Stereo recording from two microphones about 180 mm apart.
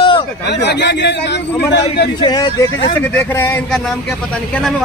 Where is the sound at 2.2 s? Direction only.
25° left (ahead or behind).